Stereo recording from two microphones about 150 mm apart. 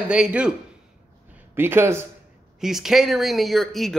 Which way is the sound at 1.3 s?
15° right (ahead or behind).